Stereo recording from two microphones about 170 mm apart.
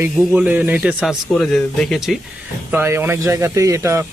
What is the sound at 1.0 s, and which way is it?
Speech, 5° left (ahead or behind).